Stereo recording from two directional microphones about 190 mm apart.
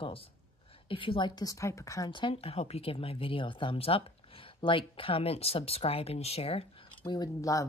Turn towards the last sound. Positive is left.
turn(degrees=15)  # may be behind; listen again after turning